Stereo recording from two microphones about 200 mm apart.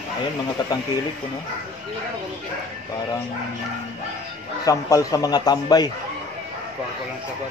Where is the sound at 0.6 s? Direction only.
20° left (ahead or behind).